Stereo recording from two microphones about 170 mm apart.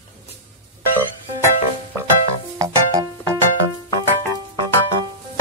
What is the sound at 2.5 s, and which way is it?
Music, 20° right (ahead or behind).